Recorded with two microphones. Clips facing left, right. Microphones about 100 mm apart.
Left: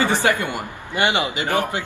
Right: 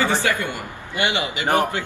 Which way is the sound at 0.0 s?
20° left (ahead or behind).